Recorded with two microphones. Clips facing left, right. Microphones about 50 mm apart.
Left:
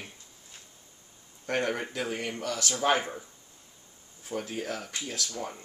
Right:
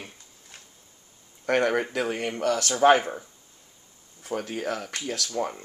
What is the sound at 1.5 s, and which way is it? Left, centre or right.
Speech, right.